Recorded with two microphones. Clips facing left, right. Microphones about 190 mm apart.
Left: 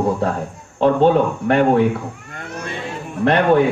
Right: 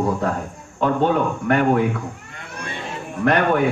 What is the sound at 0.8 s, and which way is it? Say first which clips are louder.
Speech: left 5 dB; 30° left (ahead or behind).